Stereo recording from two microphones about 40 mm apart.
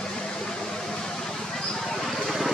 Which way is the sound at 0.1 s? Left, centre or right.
Centre.